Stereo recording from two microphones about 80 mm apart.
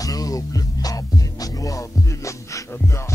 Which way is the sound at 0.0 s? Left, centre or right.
Left.